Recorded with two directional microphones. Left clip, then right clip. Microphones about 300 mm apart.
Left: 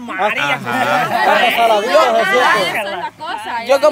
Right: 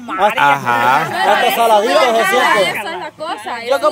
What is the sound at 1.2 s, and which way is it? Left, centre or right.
Speech, right.